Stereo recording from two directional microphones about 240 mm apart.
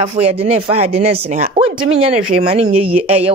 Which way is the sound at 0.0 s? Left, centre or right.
Right.